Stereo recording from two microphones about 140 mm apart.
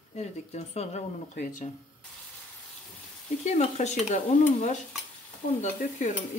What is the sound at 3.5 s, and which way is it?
Stir, 55° left (ahead or behind).